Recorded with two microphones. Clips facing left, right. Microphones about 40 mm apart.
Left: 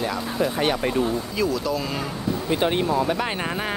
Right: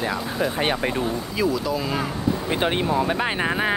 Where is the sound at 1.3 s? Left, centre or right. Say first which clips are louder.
Right 3 dB; centre.